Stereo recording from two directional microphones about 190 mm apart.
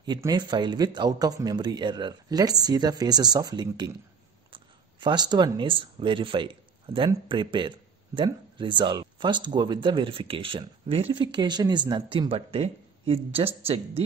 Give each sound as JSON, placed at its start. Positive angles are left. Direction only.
{"t": 0.0, "sound": "speech", "side_deg": -20}
{"t": 5.0, "sound": "speech", "side_deg": -20}